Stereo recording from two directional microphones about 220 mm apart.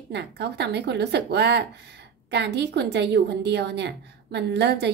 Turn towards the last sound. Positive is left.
turn(degrees=-50)  # may be behind; listen again after turning